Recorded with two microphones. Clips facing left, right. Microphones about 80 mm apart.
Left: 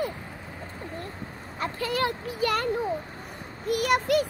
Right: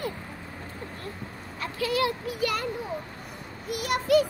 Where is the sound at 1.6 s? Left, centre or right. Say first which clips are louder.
Right 1 dB; left.